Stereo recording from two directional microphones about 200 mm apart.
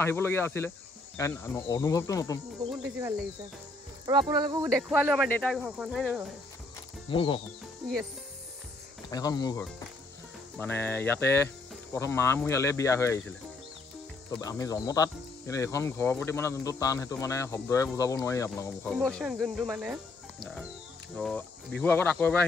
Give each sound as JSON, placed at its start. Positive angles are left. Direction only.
{"t": 0.0, "sound": "speech", "side_deg": 10}
{"t": 2.7, "sound": "speech", "side_deg": -10}
{"t": 4.0, "sound": "speech", "side_deg": -25}
{"t": 4.7, "sound": "speech", "side_deg": -5}
{"t": 7.1, "sound": "speech", "side_deg": 25}
{"t": 9.1, "sound": "speech", "side_deg": 20}
{"t": 14.4, "sound": "speech", "side_deg": 15}
{"t": 18.9, "sound": "speech", "side_deg": 5}
{"t": 21.2, "sound": "speech", "side_deg": 5}